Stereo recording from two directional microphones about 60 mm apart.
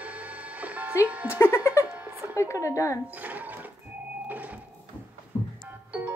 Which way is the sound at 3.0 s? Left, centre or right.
Right.